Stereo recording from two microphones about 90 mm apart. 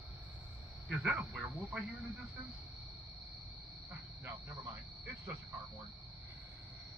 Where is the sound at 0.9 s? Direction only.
10° right (ahead or behind).